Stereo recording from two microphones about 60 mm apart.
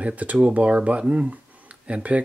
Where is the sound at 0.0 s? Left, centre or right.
Right.